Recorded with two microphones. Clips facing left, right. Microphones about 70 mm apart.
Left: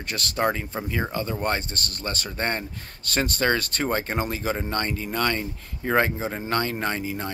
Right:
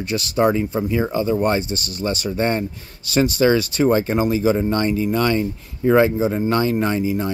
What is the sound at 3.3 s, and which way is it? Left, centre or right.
Speech, left.